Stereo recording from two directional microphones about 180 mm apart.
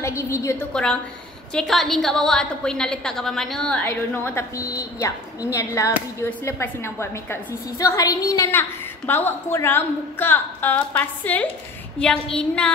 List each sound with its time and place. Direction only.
0.0 s a woman's voice: 15° left (ahead or behind)
1.5 s a woman's voice: centre (ahead or behind)